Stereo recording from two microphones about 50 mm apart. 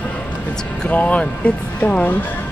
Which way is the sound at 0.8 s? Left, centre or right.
Left.